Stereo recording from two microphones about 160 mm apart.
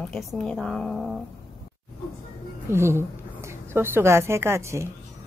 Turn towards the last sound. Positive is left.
turn(degrees=-15)  # may be behind; listen again after turning